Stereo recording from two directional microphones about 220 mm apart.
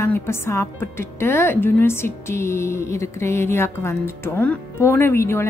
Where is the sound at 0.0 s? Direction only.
10° left (ahead or behind).